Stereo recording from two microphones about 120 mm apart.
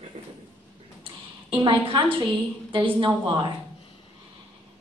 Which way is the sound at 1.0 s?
40° right (ahead or behind).